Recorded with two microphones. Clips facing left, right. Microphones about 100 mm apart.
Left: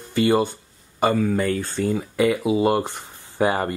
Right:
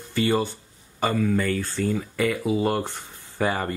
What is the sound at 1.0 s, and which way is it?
Speech, 25° left (ahead or behind).